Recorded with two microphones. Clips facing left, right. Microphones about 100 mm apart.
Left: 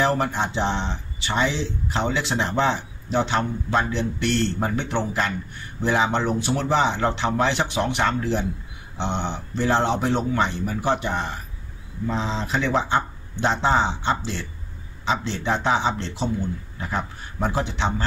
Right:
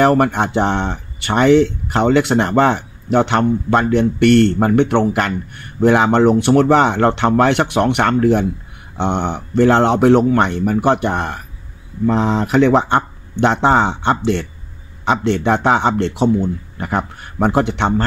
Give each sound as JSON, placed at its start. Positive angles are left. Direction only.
{"t": 0.0, "sound": "speech", "side_deg": -60}